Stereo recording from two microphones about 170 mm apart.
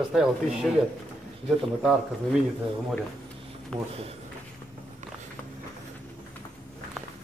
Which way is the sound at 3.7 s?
5° left (ahead or behind).